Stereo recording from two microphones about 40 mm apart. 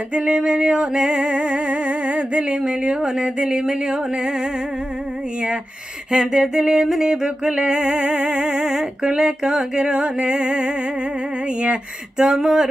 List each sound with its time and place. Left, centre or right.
0.4 s music: right
6.1 s music: centre
12.2 s speech: centre